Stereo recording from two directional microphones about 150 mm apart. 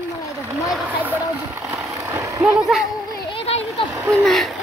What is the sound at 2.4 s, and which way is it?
Speech, centre (ahead or behind).